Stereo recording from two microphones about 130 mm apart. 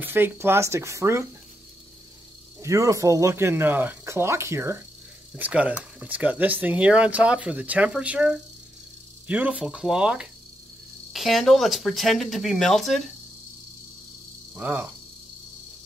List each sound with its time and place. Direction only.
0.0 s speech: 15° right (ahead or behind)
2.6 s speech: 25° right (ahead or behind)
5.3 s speech: 10° right (ahead or behind)
14.5 s speech: 15° right (ahead or behind)